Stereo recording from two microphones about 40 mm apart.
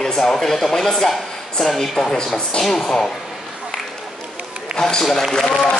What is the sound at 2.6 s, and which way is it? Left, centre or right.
Speech, centre.